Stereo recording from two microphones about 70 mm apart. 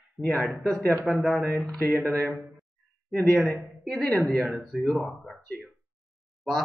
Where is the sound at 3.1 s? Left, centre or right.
Centre.